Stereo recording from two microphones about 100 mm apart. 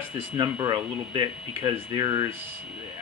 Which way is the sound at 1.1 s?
50° right (ahead or behind).